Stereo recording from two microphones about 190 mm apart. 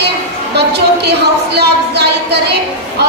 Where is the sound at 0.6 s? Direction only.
60° right (ahead or behind).